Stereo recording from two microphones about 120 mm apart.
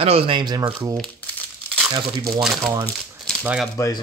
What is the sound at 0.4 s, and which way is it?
Speech, 35° right (ahead or behind).